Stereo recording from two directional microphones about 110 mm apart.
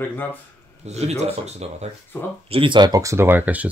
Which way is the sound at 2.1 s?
25° left (ahead or behind).